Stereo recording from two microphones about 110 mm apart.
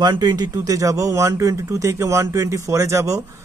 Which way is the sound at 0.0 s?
40° right (ahead or behind).